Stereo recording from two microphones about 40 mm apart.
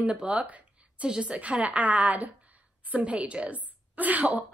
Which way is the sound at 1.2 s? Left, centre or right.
Right.